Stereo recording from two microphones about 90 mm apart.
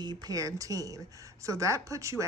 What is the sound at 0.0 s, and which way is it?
Speech, 55° right (ahead or behind).